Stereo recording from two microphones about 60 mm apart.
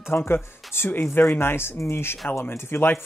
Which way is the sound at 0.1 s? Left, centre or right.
Left.